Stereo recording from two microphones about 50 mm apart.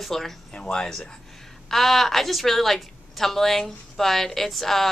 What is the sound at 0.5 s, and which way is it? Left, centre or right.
A woman's voice, centre.